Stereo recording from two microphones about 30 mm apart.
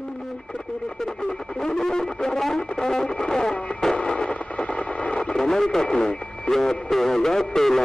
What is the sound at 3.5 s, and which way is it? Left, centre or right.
Music, left.